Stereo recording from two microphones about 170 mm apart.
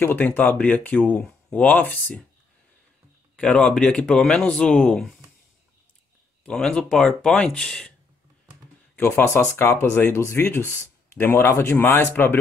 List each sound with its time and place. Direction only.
0.0 s speech: 10° left (ahead or behind)
3.3 s speech: 5° left (ahead or behind)
6.4 s speech: 5° left (ahead or behind)
8.9 s speech: 10° left (ahead or behind)